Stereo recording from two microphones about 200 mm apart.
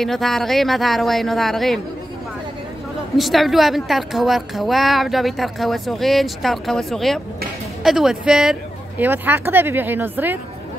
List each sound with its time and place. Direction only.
0.0 s a woman's voice: centre (ahead or behind)
3.2 s a woman's voice: centre (ahead or behind)